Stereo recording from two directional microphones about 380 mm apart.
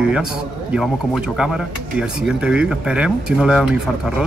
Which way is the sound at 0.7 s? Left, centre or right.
Centre.